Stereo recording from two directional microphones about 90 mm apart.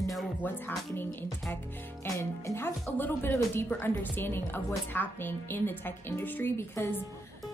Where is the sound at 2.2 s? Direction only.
30° left (ahead or behind).